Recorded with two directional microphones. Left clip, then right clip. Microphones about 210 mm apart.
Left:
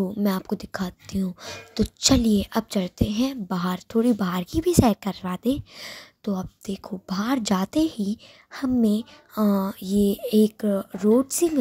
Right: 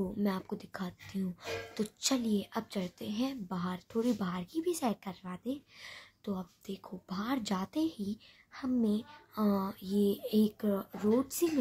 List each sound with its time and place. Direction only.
0.0 s speech: 30° left (ahead or behind)